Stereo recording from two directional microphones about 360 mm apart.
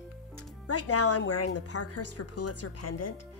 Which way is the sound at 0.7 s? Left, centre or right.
Left.